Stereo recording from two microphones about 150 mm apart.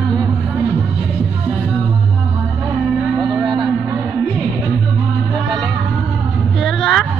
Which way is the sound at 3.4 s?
30° right (ahead or behind).